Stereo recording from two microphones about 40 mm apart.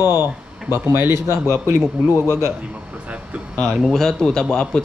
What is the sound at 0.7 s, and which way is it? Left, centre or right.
Speech, right.